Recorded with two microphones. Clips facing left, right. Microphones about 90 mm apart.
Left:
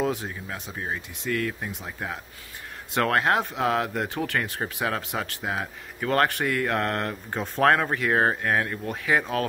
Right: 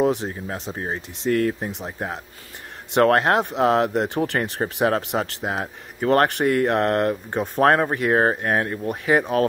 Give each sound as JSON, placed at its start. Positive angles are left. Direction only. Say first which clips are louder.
{"t": 0.0, "sound": "speech", "louder": "right 6 dB", "side_deg": -20}
{"t": 0.3, "sound": "speech", "louder": "right 6 dB", "side_deg": -35}